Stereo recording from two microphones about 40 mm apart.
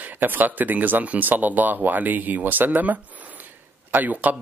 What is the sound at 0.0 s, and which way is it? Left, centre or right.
Speech, right.